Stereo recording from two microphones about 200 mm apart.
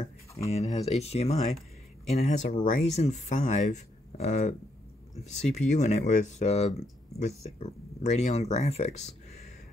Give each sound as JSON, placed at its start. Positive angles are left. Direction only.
{"t": 0.6, "sound": "speech", "side_deg": 30}